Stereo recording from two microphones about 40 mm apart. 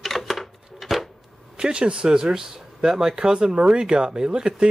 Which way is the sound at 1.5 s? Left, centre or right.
Right.